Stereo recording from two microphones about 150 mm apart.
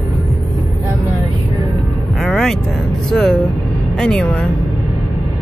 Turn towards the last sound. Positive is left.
turn(degrees=5)  # may be behind; listen again after turning